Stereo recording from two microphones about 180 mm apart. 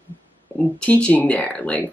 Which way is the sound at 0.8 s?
5° left (ahead or behind).